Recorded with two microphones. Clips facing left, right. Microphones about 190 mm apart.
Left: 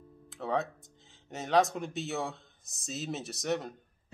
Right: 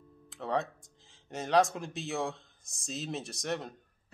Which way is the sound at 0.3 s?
Centre (ahead or behind).